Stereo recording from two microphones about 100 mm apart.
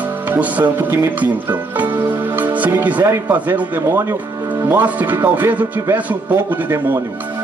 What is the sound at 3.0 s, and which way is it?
A man's voice, 25° right (ahead or behind).